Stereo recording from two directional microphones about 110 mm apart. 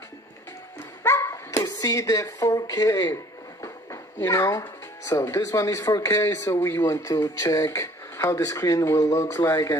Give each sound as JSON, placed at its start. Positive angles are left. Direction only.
{"t": 1.0, "sound": "speech", "side_deg": 25}
{"t": 3.6, "sound": "speech", "side_deg": 25}